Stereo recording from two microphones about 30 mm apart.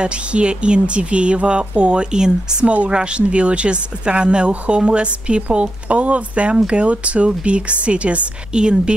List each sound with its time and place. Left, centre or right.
0.0 s speech: right
2.6 s speech: right
2.9 s speech: right
5.9 s speech: right
8.5 s speech: right